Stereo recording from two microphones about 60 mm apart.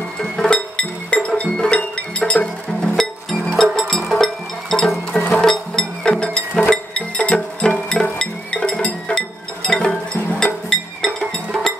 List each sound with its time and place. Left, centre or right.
0.2 s music: centre